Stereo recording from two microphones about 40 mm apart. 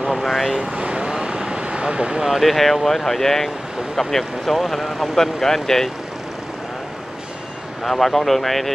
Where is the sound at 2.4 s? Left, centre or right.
Centre.